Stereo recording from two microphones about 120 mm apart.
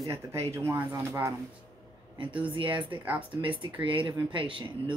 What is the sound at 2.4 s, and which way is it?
Speech, 45° right (ahead or behind).